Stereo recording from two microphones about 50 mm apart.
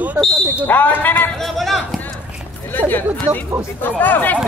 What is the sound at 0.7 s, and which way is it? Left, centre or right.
Speech, left.